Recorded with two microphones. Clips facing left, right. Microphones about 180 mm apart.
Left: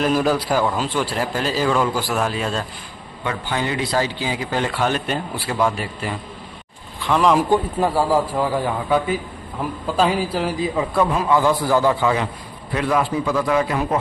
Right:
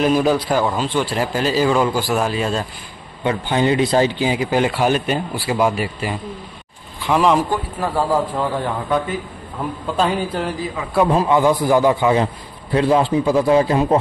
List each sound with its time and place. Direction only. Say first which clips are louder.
0.0 s a man's voice: right 3 dB; centre (ahead or behind)
3.3 s a man's voice: right 6 dB; 20° right (ahead or behind); by 7.4 s 5° right (ahead or behind)
7.4 s a man's voice: left 4 dB; 15° left (ahead or behind)
11.2 s a man's voice: right 2 dB; 15° right (ahead or behind)
12.7 s a man's voice: right 5 dB; 30° right (ahead or behind)